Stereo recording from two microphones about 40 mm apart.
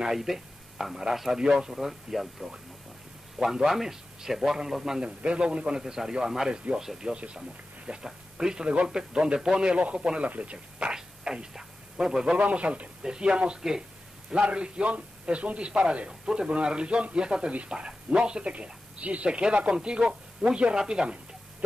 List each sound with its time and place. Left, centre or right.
0.0 s a man's voice: centre
5.0 s a man's voice: right
8.6 s speech: right
11.0 s a sound: centre
12.4 s speech: right
13.0 s speech: centre
13.6 s a man's voice: centre
14.3 s speech: right